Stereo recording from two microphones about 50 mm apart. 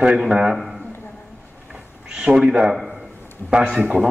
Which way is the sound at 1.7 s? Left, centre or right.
Centre.